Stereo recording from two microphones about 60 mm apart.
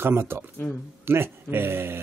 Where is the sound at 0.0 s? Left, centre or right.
Right.